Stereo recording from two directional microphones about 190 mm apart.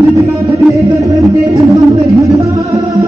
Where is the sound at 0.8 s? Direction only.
20° right (ahead or behind).